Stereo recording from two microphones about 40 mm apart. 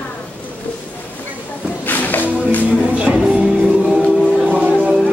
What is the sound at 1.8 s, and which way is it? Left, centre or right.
Music, left.